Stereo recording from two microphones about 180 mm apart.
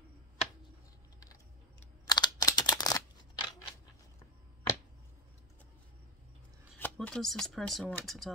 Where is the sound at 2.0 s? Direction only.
20° left (ahead or behind).